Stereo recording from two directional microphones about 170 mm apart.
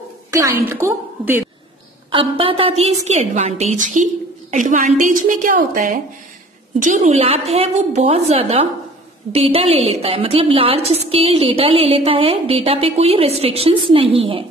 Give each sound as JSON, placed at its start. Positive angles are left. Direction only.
{"t": 0.3, "sound": "a woman's voice", "side_deg": -15}
{"t": 2.0, "sound": "a woman's voice", "side_deg": -30}